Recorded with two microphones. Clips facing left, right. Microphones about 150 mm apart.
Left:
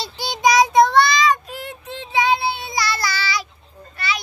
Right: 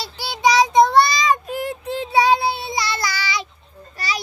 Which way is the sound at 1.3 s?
35° right (ahead or behind).